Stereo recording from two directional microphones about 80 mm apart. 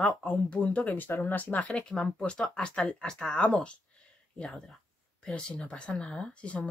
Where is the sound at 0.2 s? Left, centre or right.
Centre.